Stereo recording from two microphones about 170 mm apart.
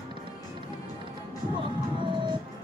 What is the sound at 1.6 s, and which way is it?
Music, 30° right (ahead or behind).